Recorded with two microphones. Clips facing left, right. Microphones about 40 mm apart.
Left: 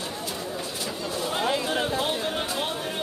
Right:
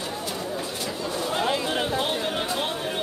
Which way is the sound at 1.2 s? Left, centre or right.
Centre.